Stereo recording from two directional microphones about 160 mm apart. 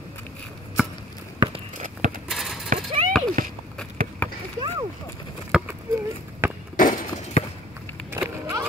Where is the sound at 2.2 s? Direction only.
Centre (ahead or behind).